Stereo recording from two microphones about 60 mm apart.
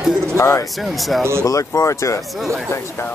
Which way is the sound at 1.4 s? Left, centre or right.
Left.